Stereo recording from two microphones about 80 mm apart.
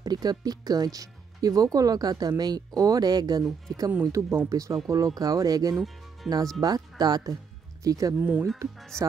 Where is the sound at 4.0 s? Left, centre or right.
Right.